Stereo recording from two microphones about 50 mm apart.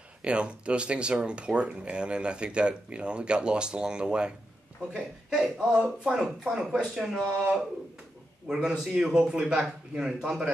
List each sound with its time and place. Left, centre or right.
0.2 s speech: right